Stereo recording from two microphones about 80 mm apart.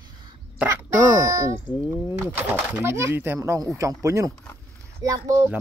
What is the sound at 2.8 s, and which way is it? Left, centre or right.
Speech, right.